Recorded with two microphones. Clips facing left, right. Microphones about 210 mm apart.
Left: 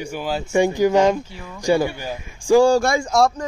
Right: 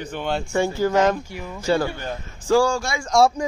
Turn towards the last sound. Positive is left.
turn(degrees=0)  # may be behind; listen again after turning